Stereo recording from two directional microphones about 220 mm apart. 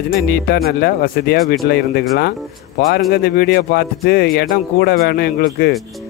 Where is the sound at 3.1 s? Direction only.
45° left (ahead or behind).